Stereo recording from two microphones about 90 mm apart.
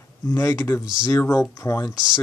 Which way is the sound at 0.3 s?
25° left (ahead or behind).